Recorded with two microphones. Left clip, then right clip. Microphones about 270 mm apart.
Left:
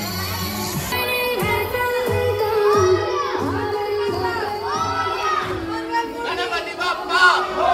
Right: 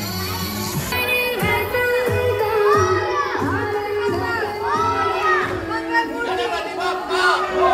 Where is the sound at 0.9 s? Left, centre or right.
Left.